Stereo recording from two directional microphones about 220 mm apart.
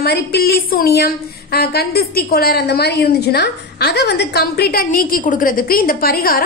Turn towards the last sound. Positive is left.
turn(degrees=40)  # may be behind; listen again after turning